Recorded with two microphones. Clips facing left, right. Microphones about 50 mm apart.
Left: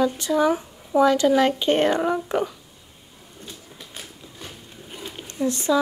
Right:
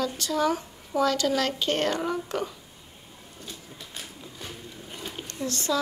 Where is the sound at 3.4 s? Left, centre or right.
Centre.